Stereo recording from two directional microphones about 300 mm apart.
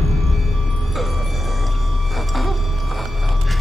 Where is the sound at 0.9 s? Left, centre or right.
Centre.